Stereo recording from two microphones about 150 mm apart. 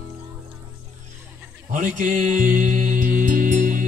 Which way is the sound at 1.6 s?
60° right (ahead or behind).